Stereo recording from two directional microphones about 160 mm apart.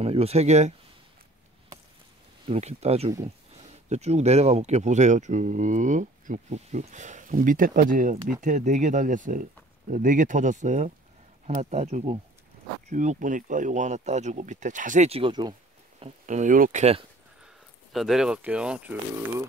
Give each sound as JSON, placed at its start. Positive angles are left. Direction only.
{"t": 0.0, "sound": "speech", "side_deg": -40}
{"t": 2.4, "sound": "speech", "side_deg": -40}
{"t": 16.0, "sound": "speech", "side_deg": -50}
{"t": 17.9, "sound": "speech", "side_deg": 0}